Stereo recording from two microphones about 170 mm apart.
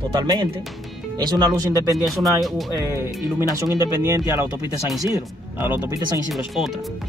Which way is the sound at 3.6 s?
15° right (ahead or behind).